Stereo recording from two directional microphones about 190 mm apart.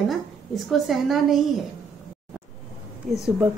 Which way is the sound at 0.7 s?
Centre (ahead or behind).